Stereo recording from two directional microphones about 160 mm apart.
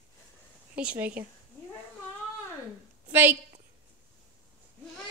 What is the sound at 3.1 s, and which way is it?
Speech, 10° right (ahead or behind).